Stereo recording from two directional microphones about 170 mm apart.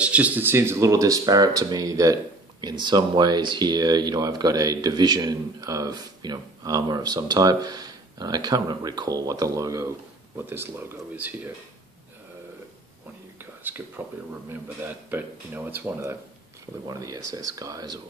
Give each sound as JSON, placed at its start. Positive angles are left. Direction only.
{"t": 0.0, "sound": "speech", "side_deg": -5}
{"t": 13.4, "sound": "a sound", "side_deg": -10}
{"t": 14.5, "sound": "speech", "side_deg": -10}